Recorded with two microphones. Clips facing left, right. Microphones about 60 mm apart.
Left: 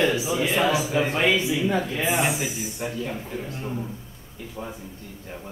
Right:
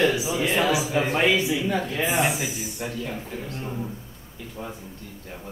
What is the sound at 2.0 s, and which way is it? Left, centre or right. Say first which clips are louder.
Speech: even; right.